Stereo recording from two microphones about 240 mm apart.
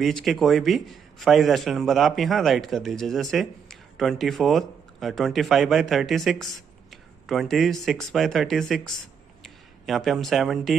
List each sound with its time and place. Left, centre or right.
0.0 s a man's voice: centre